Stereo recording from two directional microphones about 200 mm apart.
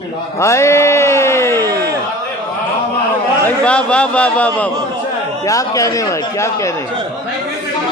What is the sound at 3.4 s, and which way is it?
Speech, 5° left (ahead or behind).